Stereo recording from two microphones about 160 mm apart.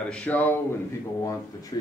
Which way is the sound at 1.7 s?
30° left (ahead or behind).